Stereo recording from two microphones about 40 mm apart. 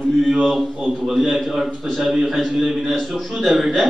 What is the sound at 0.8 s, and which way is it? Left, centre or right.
A man's voice, centre.